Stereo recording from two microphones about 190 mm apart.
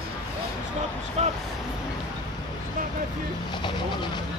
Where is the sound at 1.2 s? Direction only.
35° right (ahead or behind).